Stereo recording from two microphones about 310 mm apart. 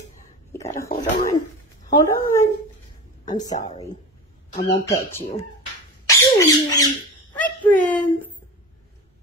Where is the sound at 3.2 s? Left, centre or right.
Centre.